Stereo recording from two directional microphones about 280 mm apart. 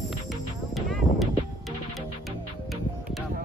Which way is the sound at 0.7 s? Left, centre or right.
Centre.